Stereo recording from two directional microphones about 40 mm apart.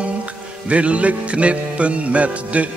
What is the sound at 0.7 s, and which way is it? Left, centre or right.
Speech, right.